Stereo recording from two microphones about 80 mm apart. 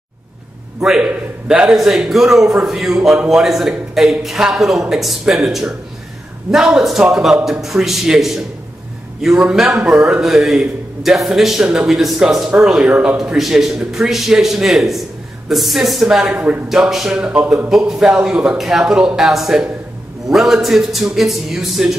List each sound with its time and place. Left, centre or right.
0.7 s a man's voice: centre
1.0 s a man's voice: centre
1.7 s a man's voice: centre
13.2 s a man's voice: centre
16.6 s a man's voice: centre